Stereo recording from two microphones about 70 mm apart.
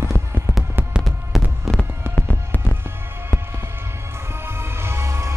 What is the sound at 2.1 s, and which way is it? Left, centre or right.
Fireworks, right.